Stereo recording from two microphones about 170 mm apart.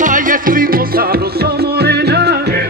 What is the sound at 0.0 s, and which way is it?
Music, 50° right (ahead or behind).